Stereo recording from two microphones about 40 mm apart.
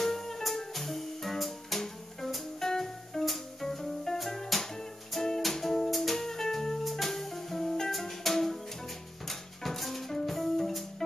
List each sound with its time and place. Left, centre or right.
0.0 s music: centre